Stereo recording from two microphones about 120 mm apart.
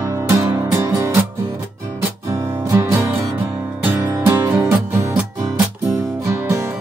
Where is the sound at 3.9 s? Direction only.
25° right (ahead or behind).